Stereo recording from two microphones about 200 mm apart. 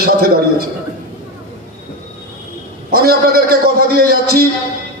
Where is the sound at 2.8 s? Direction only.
50° right (ahead or behind).